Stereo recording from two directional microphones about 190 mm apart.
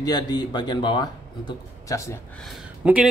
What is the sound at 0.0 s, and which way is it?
A man's voice, 20° left (ahead or behind).